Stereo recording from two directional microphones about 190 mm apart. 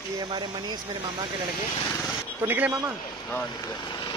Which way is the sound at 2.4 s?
10° right (ahead or behind).